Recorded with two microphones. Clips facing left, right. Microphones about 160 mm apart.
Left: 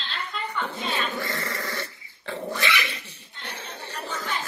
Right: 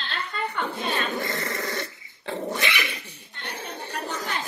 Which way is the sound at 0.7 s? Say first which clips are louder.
Right 2 dB; 60° right (ahead or behind).